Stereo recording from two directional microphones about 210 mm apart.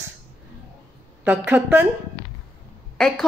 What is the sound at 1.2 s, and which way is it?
Speech, 10° right (ahead or behind).